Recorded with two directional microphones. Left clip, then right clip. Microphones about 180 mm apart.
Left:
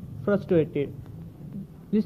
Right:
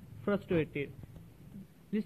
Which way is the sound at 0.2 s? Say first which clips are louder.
Left 9 dB; 25° right (ahead or behind).